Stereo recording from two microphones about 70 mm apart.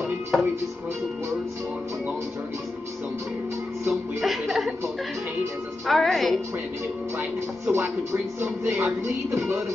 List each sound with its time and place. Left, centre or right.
0.3 s music: centre
3.9 s chuckle: centre
5.9 s speech: centre
7.6 s music: right